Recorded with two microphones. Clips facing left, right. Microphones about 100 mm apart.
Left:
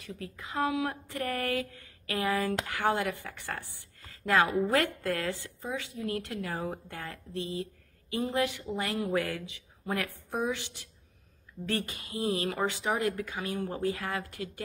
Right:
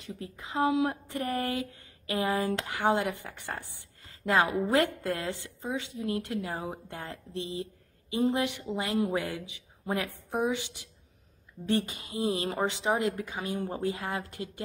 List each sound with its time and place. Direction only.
0.0 s speech: 25° right (ahead or behind)
4.6 s a woman's voice: 20° right (ahead or behind)